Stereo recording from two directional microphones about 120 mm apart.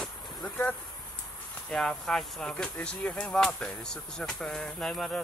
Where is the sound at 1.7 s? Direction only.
5° left (ahead or behind).